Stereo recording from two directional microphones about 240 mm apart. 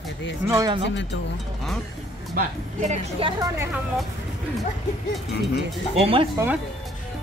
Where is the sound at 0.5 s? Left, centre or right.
Centre.